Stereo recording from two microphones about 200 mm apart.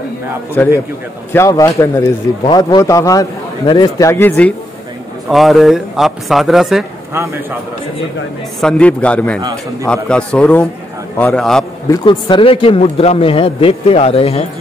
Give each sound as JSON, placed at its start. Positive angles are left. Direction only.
{"t": 0.6, "sound": "a man's voice", "side_deg": 10}
{"t": 8.5, "sound": "speech", "side_deg": 5}
{"t": 11.9, "sound": "a man's voice", "side_deg": 25}